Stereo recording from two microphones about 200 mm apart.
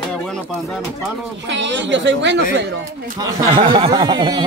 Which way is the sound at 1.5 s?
65° right (ahead or behind).